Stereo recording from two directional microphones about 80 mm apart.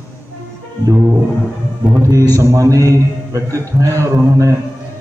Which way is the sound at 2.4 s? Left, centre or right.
Right.